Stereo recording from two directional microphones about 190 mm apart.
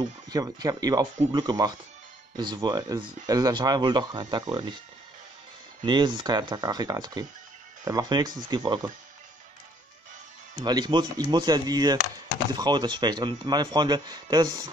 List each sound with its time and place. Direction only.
0.3 s speech: 20° right (ahead or behind)
5.9 s speech: 25° right (ahead or behind)
10.6 s speech: 20° right (ahead or behind)